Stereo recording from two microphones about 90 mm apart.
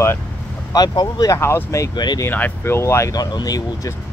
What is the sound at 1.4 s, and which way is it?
Speech, 30° left (ahead or behind).